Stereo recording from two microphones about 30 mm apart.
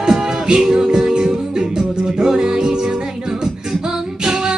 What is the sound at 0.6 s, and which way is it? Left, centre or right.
Music, centre.